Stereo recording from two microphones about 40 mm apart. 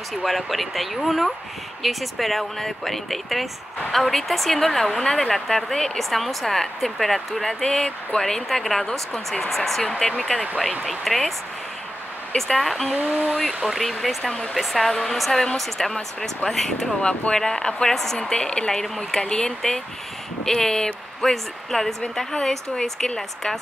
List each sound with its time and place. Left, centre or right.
0.2 s speech: centre
7.6 s speech: centre
12.4 s speech: centre
12.9 s speech: right
13.7 s speech: centre
17.4 s speech: centre